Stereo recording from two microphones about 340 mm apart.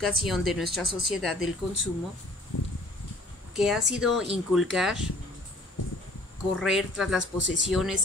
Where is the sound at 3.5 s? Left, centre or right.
Centre.